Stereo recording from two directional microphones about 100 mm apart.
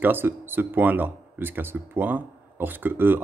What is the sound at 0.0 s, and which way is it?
Speech, 20° right (ahead or behind).